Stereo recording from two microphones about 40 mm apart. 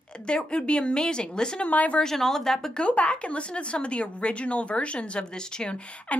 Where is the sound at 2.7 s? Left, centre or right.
Left.